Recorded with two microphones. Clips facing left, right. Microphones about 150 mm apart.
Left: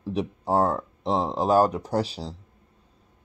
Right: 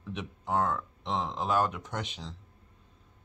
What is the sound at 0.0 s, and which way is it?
Speech, 35° left (ahead or behind).